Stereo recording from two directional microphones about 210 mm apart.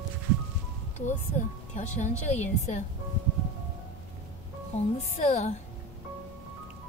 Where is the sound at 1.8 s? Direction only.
35° left (ahead or behind).